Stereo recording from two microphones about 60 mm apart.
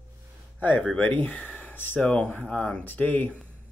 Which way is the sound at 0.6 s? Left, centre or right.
Left.